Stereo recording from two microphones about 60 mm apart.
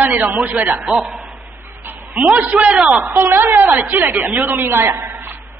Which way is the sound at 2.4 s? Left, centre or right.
Right.